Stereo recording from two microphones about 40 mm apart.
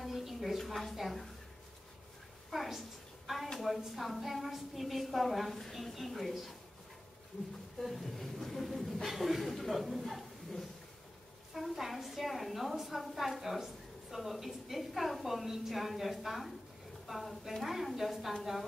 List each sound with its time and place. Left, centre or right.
0.0 s a woman's voice: centre
2.5 s a sound: centre
3.5 s speech: centre
7.8 s speech: centre